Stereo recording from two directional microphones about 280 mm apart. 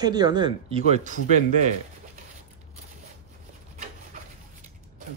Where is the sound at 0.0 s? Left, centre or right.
Centre.